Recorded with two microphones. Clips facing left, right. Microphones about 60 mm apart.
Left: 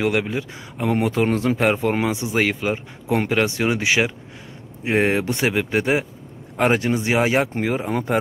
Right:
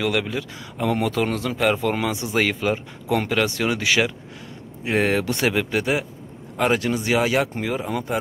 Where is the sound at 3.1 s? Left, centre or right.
Left.